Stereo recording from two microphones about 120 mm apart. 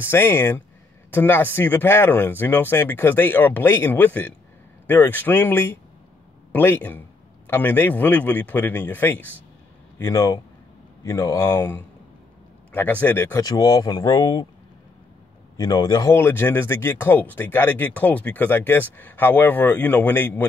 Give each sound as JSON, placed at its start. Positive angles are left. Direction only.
{"t": 0.0, "sound": "speech", "side_deg": 20}
{"t": 13.4, "sound": "speech", "side_deg": 30}
{"t": 15.5, "sound": "speech", "side_deg": 35}
{"t": 16.2, "sound": "speech", "side_deg": 20}